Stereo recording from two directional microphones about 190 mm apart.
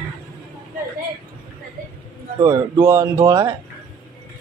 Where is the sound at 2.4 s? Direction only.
20° right (ahead or behind).